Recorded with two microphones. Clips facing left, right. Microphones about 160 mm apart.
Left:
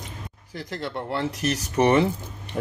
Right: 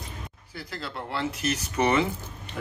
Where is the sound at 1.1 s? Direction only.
40° left (ahead or behind).